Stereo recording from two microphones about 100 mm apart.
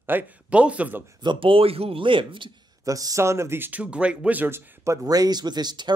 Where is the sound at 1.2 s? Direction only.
55° right (ahead or behind).